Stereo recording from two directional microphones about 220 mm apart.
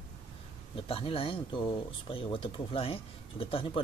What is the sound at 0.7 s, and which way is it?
Speech, 25° left (ahead or behind).